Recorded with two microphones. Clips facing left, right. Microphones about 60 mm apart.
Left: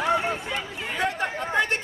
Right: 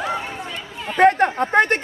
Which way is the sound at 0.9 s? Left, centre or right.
Right.